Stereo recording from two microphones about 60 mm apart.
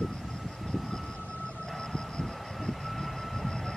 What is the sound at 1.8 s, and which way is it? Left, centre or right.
Vehicle, centre.